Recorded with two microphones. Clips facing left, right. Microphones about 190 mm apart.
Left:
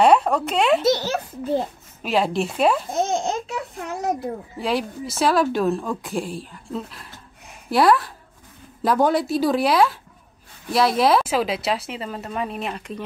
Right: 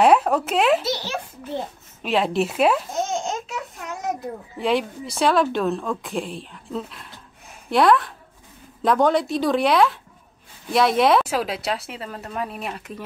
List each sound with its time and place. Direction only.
0.0 s speech: 5° right (ahead or behind)
0.8 s a child's voice: 45° left (ahead or behind)
2.0 s speech: centre (ahead or behind)
2.9 s baby laughter: 35° left (ahead or behind)
4.2 s speech: 25° left (ahead or behind)
4.6 s speech: centre (ahead or behind)